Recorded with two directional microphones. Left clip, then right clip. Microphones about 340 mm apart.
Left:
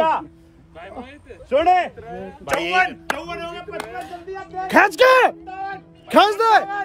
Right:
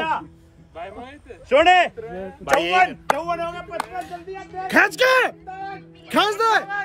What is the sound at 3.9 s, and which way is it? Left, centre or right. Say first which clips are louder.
Speech: even; centre.